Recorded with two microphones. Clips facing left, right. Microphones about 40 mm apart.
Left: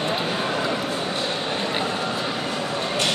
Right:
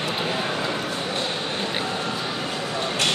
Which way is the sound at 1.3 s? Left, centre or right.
Centre.